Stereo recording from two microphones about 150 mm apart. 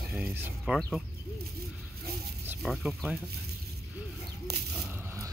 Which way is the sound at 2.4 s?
5° right (ahead or behind).